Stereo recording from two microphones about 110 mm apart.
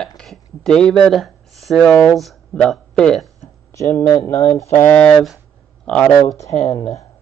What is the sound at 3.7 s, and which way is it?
Speech, 30° left (ahead or behind).